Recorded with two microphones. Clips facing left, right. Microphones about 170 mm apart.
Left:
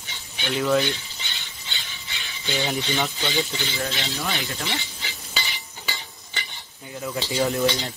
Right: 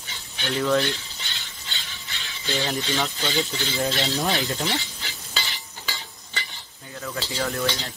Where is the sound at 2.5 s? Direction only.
Centre (ahead or behind).